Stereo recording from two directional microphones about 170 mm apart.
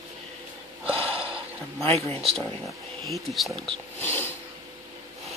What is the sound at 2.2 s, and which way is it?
Speech, centre (ahead or behind).